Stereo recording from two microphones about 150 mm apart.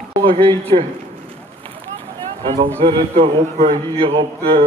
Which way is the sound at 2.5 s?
40° right (ahead or behind).